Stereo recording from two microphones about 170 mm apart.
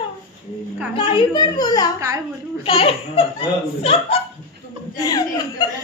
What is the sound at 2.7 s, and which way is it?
A child's voice, 35° left (ahead or behind).